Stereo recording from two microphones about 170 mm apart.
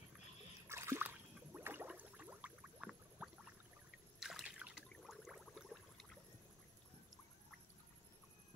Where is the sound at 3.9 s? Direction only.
Centre (ahead or behind).